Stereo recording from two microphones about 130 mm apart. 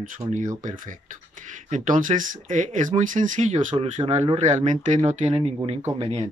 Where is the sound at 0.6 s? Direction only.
90° right; by 3.8 s 70° right (ahead or behind).